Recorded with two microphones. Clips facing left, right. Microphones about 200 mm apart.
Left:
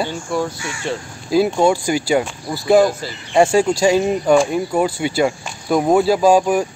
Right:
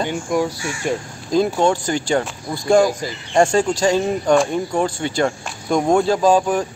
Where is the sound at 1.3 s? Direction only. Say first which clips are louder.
Left 2 dB; 10° left (ahead or behind).